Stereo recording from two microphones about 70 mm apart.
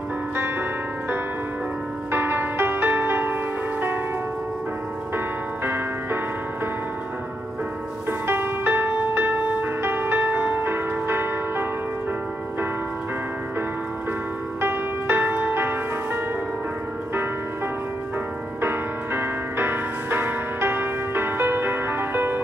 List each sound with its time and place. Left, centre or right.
2.1 s music: right
8.1 s music: right
14.6 s music: right
18.6 s music: right